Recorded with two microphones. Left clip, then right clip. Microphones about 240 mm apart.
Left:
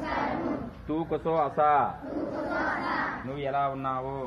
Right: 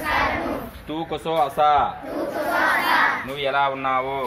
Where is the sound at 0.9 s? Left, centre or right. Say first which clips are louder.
Right 3 dB; right.